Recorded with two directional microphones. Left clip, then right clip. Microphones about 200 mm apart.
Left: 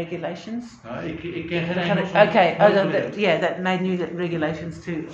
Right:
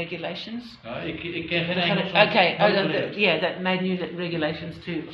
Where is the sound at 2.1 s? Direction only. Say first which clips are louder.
Left 3 dB; 40° left (ahead or behind).